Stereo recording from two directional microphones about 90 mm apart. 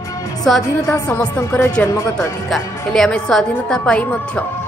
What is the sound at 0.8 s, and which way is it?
A woman's voice, 35° left (ahead or behind).